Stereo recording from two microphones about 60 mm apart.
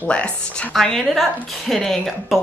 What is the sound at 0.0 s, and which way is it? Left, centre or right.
Speech, centre.